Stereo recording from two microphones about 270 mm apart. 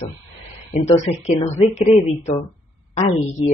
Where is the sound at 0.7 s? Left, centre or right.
Left.